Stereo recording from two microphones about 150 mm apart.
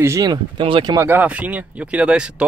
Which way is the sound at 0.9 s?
15° right (ahead or behind).